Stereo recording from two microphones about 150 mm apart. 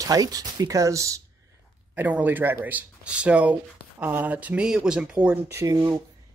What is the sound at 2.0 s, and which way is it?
Speech, 10° right (ahead or behind).